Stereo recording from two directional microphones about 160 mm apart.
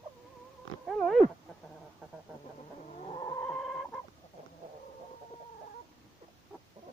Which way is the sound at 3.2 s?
20° left (ahead or behind).